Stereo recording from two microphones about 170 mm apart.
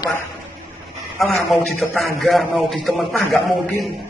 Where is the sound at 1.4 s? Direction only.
Centre (ahead or behind).